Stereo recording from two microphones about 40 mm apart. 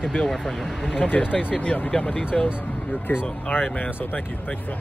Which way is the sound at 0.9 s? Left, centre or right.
Left.